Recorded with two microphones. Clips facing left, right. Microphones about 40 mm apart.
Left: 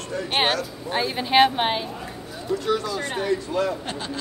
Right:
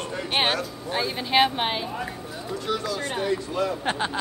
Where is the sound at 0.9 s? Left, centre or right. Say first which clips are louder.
Left 3 dB; centre.